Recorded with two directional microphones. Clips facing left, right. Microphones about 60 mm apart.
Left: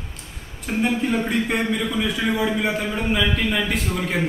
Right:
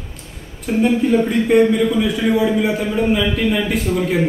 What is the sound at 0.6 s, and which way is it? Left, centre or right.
A man's voice, centre.